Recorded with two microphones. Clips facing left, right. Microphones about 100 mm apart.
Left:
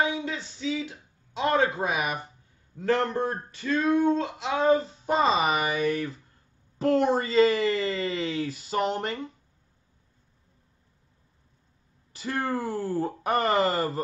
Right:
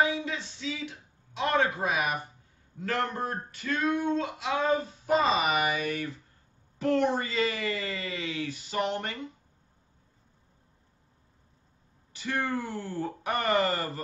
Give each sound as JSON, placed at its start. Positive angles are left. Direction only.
{"t": 0.0, "sound": "speech", "side_deg": 25}
{"t": 1.4, "sound": "a sound", "side_deg": 25}
{"t": 6.8, "sound": "speech", "side_deg": 35}
{"t": 12.1, "sound": "speech", "side_deg": 35}